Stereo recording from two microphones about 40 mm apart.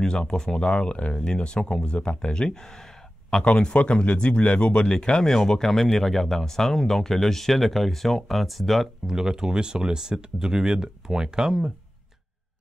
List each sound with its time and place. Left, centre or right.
0.0 s speech: left
3.4 s speech: left; by 8.8 s centre
9.0 s speech: centre